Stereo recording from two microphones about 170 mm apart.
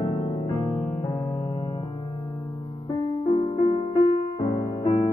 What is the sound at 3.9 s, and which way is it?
Music, 25° left (ahead or behind).